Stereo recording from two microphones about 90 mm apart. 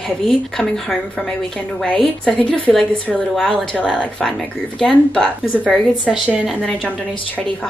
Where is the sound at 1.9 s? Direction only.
5° left (ahead or behind).